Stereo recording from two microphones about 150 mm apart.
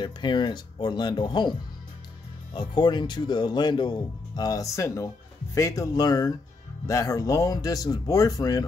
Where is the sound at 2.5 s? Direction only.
30° left (ahead or behind).